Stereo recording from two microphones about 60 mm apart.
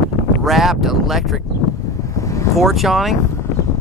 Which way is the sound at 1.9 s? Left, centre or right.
Left.